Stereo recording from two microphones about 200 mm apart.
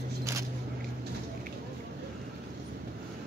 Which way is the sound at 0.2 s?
15° right (ahead or behind).